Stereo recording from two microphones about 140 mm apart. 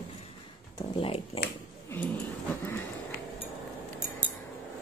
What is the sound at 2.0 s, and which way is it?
Speech, 10° left (ahead or behind).